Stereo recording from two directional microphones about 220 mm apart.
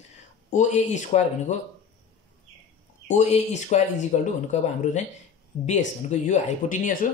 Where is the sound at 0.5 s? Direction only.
35° left (ahead or behind).